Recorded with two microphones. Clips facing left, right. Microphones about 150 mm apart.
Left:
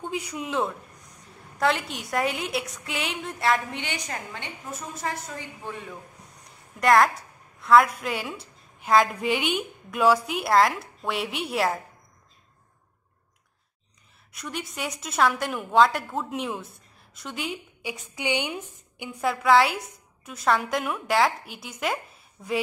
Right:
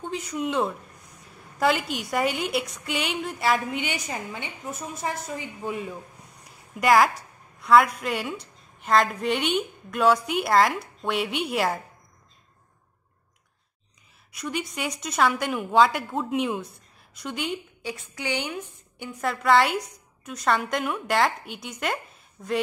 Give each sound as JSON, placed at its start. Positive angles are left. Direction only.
{"t": 0.0, "sound": "a woman's voice", "side_deg": 10}
{"t": 6.8, "sound": "a woman's voice", "side_deg": 0}
{"t": 14.3, "sound": "a woman's voice", "side_deg": 0}
{"t": 18.1, "sound": "speech", "side_deg": 20}
{"t": 19.0, "sound": "a woman's voice", "side_deg": 5}